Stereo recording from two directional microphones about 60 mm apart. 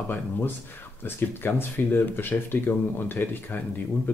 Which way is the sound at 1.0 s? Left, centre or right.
Left.